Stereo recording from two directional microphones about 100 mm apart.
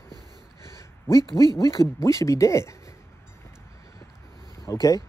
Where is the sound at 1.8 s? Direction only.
30° left (ahead or behind).